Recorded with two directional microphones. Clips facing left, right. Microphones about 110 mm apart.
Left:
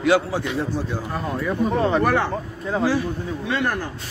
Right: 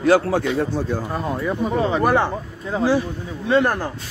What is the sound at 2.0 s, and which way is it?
Speech, 20° right (ahead or behind).